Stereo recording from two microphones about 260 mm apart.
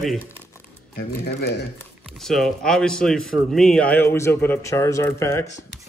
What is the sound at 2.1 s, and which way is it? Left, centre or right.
Speech, centre.